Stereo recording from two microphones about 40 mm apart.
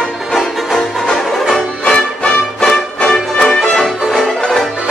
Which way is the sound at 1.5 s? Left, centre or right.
Left.